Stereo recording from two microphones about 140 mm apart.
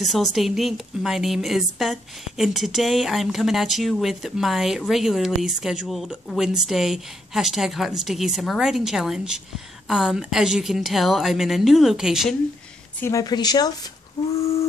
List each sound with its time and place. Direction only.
0.0 s a woman's voice: centre (ahead or behind)
13.0 s a woman's voice: 25° left (ahead or behind)
14.4 s lullaby: 45° left (ahead or behind)